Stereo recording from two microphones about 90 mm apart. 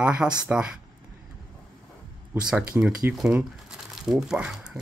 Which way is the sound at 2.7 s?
20° right (ahead or behind).